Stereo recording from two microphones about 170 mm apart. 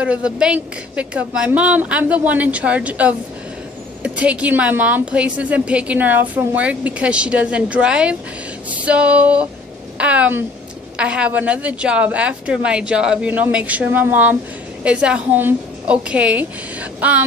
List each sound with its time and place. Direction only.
0.0 s a woman's voice: 5° right (ahead or behind)